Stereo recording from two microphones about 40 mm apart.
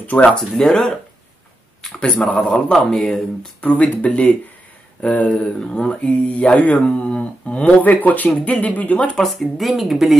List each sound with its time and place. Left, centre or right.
0.2 s speech: centre
2.0 s speech: left
3.6 s speech: left
7.8 s speech: left
8.3 s speech: left
8.5 s speech: left
9.1 s speech: centre